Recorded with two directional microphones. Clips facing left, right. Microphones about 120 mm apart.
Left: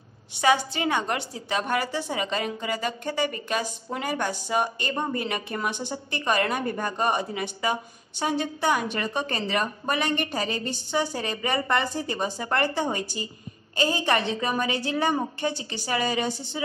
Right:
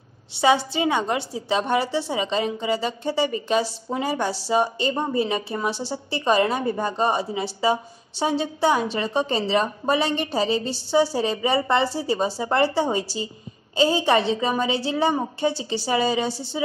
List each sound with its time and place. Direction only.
0.7 s a woman's voice: 20° right (ahead or behind)
6.3 s a woman's voice: 20° right (ahead or behind)